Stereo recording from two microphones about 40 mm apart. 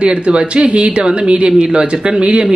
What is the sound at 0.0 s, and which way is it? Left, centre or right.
A woman's voice, right.